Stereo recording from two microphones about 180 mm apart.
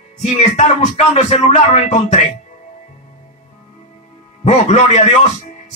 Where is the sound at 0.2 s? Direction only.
40° left (ahead or behind).